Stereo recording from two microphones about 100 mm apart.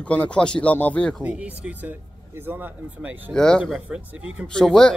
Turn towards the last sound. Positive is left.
turn(degrees=5)  # may be behind; listen again after turning